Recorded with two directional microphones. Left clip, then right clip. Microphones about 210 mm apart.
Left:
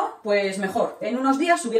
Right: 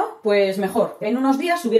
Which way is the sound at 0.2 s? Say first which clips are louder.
Right 6 dB; 40° right (ahead or behind).